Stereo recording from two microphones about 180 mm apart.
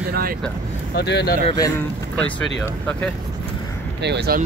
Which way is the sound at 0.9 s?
70° left (ahead or behind).